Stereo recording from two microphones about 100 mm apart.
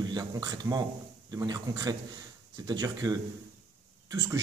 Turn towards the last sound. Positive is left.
turn(degrees=-35)  # may be behind; listen again after turning